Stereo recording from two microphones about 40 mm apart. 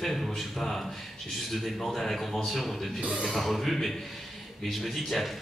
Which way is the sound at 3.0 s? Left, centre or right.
Right.